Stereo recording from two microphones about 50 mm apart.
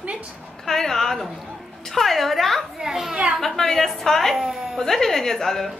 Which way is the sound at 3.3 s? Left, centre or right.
Centre.